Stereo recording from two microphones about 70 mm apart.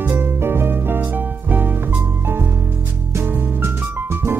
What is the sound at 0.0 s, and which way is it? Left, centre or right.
Music, right.